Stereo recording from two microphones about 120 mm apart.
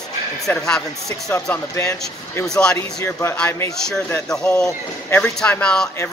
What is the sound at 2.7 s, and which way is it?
Speech, 20° left (ahead or behind).